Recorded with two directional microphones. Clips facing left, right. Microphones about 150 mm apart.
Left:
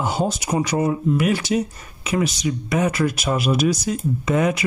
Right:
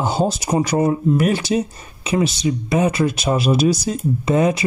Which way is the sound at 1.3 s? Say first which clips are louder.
Right 2 dB; 30° right (ahead or behind).